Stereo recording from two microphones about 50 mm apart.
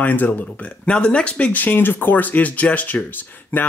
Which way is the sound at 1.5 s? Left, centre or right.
Left.